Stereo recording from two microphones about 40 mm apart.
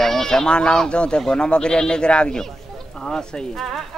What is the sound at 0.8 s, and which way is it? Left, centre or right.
Speech, left.